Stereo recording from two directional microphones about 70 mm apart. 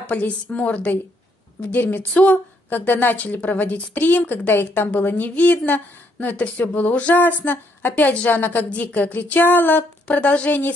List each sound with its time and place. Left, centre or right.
0.0 s a woman's voice: left